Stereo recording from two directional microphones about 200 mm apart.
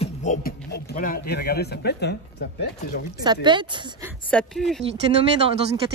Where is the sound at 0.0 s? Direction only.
40° left (ahead or behind); by 2.1 s 55° left (ahead or behind).